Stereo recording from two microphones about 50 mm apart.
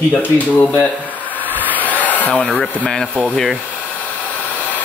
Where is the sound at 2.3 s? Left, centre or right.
Centre.